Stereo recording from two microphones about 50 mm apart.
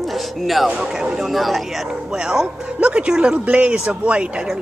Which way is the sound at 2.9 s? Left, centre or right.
Right.